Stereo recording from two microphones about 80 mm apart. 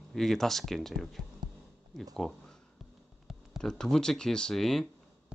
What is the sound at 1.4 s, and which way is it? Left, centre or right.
Heart sounds, right.